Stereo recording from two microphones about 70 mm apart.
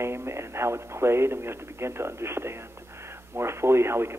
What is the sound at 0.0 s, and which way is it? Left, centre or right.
Speech, right.